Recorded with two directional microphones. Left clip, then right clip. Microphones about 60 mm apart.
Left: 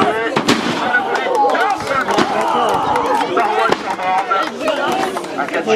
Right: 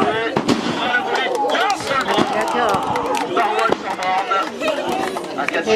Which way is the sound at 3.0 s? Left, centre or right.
Centre.